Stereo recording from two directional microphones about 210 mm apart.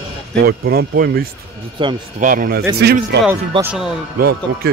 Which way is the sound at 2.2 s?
40° right (ahead or behind).